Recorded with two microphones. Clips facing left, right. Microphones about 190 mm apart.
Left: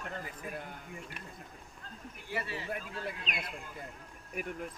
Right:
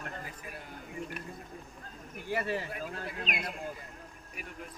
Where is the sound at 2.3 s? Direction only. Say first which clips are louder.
Right 5 dB; 50° right (ahead or behind).